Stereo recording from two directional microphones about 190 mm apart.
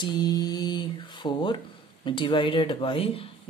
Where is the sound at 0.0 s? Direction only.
20° left (ahead or behind).